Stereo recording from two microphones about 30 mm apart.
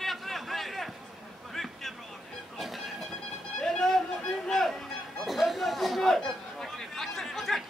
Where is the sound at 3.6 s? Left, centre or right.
Centre.